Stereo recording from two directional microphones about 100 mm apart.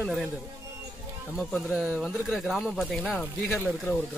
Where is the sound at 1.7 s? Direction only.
10° right (ahead or behind).